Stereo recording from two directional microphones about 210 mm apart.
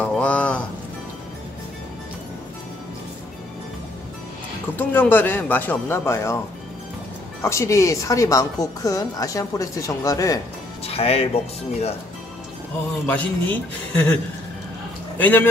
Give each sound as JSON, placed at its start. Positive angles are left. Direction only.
{"t": 0.0, "sound": "music", "side_deg": 5}
{"t": 4.7, "sound": "speech", "side_deg": 10}
{"t": 7.4, "sound": "speech", "side_deg": 15}
{"t": 10.9, "sound": "speech", "side_deg": 30}
{"t": 13.0, "sound": "speech", "side_deg": 10}
{"t": 15.1, "sound": "speech", "side_deg": 10}